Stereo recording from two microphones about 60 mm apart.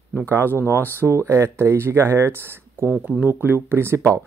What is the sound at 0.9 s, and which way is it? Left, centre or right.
Speech, right.